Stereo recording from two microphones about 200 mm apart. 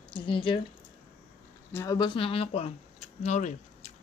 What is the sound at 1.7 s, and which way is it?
Speech, 15° left (ahead or behind).